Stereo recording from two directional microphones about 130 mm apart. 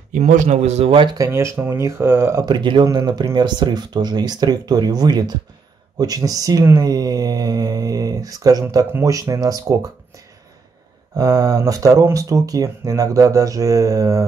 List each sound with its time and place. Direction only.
0.1 s speech: 75° right (ahead or behind); by 1.0 s 50° right (ahead or behind)
1.0 s speech: 25° right (ahead or behind)
2.4 s speech: 35° right (ahead or behind)